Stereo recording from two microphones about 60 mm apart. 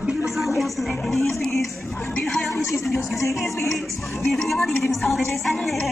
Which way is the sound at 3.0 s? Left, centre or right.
Left.